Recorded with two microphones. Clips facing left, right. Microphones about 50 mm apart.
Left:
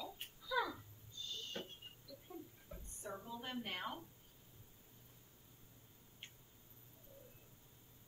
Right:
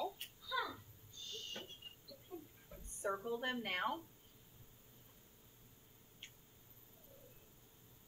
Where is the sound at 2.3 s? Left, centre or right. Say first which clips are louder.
Right 1 dB; left.